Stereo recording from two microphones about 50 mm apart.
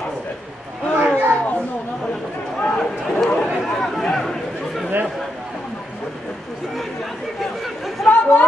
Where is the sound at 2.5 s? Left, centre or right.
Centre.